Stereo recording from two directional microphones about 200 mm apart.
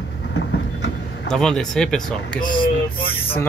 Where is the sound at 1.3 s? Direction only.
5° left (ahead or behind).